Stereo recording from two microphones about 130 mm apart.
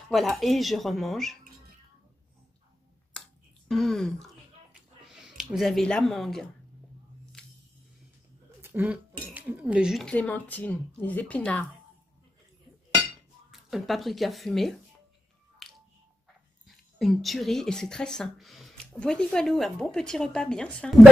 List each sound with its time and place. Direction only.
0.1 s a woman's voice: centre (ahead or behind)
3.1 s finger snapping: 5° left (ahead or behind)
5.0 s speech: 5° right (ahead or behind)
7.4 s music: 5° left (ahead or behind)
8.5 s a sound: 15° right (ahead or behind)
9.3 s cutlery: 10° right (ahead or behind)
10.0 s speech: 10° left (ahead or behind)
13.5 s speech: centre (ahead or behind)
16.6 s a woman's voice: centre (ahead or behind)